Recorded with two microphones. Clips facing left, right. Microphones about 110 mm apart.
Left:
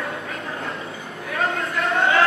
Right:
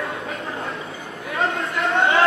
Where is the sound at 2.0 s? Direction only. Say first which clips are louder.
Right 1 dB; 30° right (ahead or behind).